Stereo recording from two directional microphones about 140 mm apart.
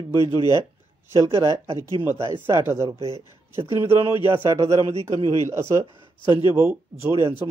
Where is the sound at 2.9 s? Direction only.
45° right (ahead or behind).